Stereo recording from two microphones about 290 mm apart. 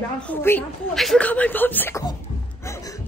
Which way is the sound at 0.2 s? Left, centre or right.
Centre.